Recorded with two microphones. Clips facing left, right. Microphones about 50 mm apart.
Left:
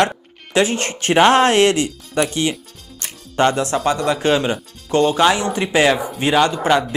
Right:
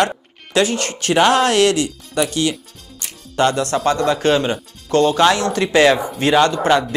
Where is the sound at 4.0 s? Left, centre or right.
Centre.